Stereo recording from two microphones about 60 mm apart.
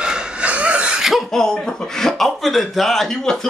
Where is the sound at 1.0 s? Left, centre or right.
Centre.